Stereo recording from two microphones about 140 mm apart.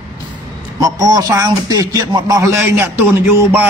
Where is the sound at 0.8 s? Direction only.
25° right (ahead or behind).